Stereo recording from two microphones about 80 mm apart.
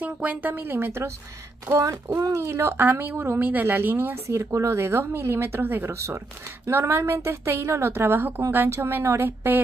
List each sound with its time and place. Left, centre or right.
0.0 s speech: centre
1.7 s a woman's voice: right
2.7 s a woman's voice: right